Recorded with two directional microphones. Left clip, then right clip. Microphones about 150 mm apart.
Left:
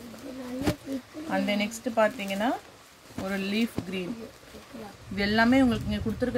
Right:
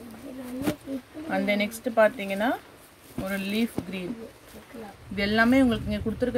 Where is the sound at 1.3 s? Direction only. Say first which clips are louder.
Right 2 dB; 5° right (ahead or behind).